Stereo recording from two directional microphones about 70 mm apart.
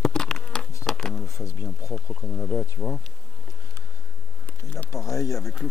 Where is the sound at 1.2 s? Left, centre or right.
Left.